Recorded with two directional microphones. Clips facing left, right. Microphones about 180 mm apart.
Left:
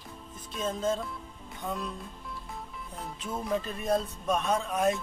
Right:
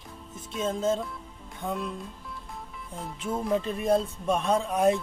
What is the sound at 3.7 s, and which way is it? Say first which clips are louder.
Speech: right 4 dB; 25° right (ahead or behind).